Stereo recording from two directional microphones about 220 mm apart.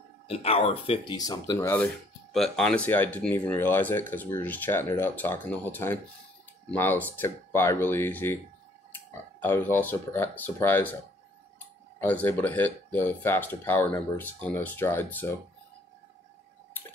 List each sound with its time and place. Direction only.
0.3 s speech: 25° left (ahead or behind); by 11.0 s 10° left (ahead or behind)
12.0 s speech: 10° left (ahead or behind)